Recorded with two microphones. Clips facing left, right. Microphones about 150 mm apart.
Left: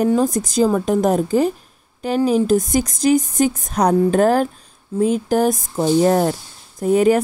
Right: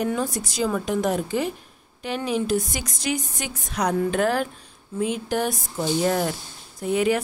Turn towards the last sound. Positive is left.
turn(degrees=40)  # may be behind; listen again after turning